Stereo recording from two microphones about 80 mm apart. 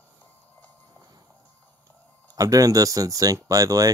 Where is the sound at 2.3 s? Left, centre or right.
Right.